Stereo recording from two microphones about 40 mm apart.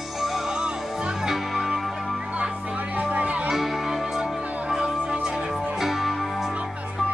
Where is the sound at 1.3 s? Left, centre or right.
Centre.